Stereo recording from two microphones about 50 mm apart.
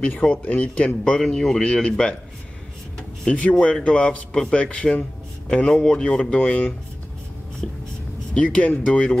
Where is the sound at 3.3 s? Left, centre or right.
Left.